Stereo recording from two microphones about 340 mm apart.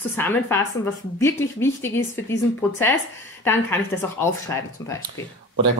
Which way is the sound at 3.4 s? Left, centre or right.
Centre.